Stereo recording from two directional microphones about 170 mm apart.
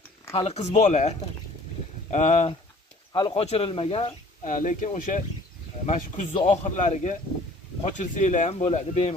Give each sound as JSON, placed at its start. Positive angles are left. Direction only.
{"t": 0.3, "sound": "speech", "side_deg": 40}
{"t": 3.1, "sound": "speech", "side_deg": 30}